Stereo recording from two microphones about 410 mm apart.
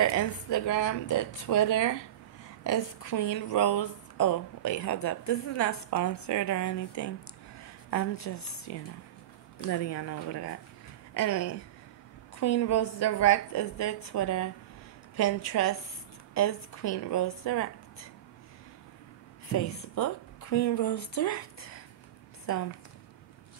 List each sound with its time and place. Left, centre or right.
0.0 s a woman's voice: left
19.5 s a woman's voice: left